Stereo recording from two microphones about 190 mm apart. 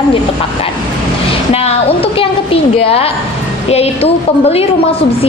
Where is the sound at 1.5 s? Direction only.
30° left (ahead or behind).